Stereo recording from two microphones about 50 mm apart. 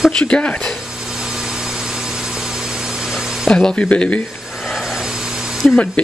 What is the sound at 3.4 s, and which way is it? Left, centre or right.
Speech, centre.